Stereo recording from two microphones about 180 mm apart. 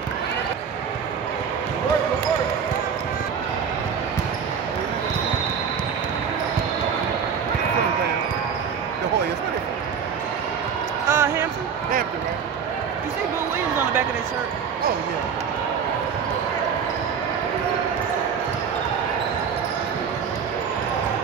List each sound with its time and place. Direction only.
11.1 s basketball bounce: 15° right (ahead or behind)